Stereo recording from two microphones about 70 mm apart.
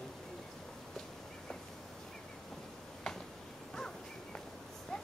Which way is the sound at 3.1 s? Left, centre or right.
Centre.